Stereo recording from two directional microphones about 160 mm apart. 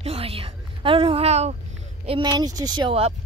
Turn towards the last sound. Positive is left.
turn(degrees=-30)  # may be behind; listen again after turning